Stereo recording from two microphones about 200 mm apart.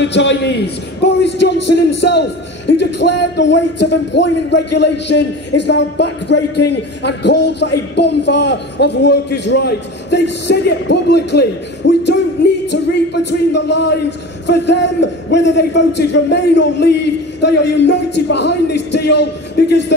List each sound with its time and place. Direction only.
0.0 s a man's voice: 60° left (ahead or behind)